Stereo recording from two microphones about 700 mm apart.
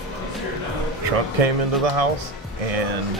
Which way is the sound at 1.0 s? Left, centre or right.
Right.